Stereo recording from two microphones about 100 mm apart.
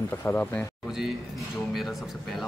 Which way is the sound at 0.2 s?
20° left (ahead or behind).